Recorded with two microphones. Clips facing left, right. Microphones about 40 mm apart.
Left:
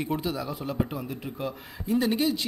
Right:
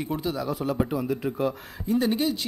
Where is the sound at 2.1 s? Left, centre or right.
Left.